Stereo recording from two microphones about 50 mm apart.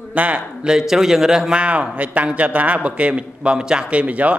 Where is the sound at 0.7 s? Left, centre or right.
Centre.